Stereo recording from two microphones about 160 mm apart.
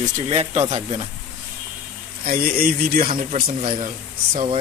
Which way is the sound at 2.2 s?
65° right (ahead or behind).